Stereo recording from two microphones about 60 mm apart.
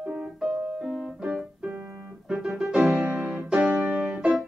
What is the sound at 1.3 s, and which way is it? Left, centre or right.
Keyboard, centre.